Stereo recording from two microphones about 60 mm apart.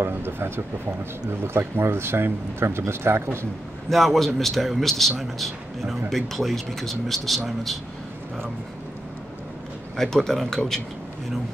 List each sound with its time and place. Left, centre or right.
0.0 s speech: right
3.9 s speech: centre
9.9 s speech: centre